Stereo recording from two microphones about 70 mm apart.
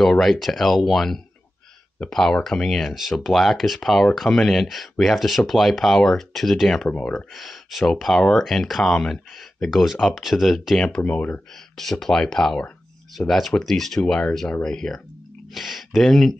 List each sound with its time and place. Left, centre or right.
0.0 s speech: centre
6.9 s speech: centre
7.2 s speech: centre
11.1 s speech: centre
11.7 s speech: centre
15.5 s speech: centre